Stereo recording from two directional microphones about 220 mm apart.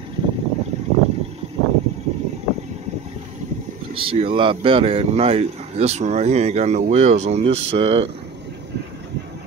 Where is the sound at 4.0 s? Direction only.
25° right (ahead or behind).